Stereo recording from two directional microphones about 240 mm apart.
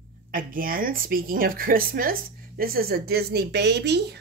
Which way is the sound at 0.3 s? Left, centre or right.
Right.